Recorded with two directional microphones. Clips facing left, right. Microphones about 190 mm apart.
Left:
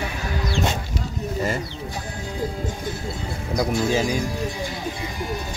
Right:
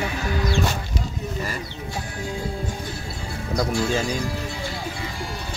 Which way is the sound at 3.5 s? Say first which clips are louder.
Left 2 dB; 15° left (ahead or behind).